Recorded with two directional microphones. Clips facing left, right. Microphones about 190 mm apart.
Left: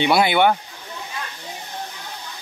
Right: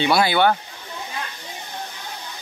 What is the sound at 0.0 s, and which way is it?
Speech, 20° left (ahead or behind).